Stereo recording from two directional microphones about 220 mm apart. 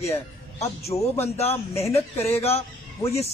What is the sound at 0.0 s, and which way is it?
Speech, 30° left (ahead or behind).